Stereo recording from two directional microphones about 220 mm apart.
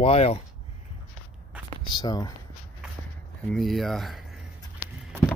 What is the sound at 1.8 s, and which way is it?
Speech, 20° left (ahead or behind).